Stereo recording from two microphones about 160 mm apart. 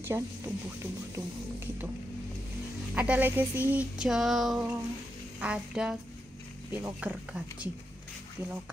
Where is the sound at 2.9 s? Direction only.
10° right (ahead or behind).